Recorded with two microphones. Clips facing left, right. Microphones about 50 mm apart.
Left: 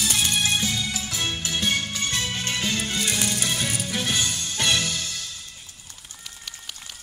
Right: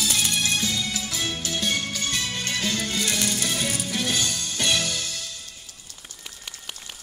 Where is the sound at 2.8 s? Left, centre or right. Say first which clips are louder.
Even; centre.